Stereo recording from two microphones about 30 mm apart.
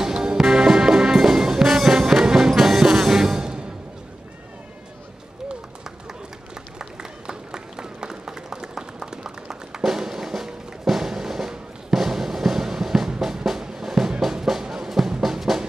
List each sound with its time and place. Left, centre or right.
0.1 s music: right
0.4 s music: centre
2.5 s music: centre; by 3.6 s right
6.5 s a sound: right
9.8 s music: centre